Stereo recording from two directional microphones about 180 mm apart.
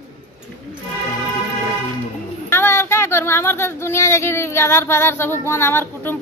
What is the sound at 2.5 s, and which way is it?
A woman's voice, 15° left (ahead or behind).